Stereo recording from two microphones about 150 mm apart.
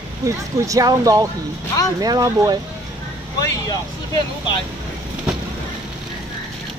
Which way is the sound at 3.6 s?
25° left (ahead or behind).